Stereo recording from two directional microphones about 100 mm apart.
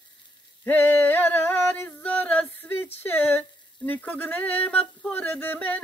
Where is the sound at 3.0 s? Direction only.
20° left (ahead or behind).